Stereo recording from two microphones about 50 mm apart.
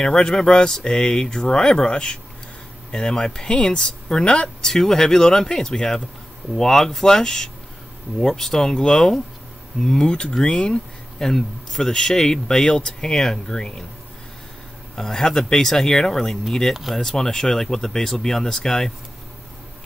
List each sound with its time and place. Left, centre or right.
0.0 s speech: centre
4.6 s speech: centre
15.0 s speech: centre